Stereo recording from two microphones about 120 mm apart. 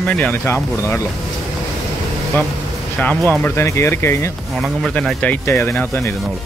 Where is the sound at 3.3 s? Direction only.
15° left (ahead or behind).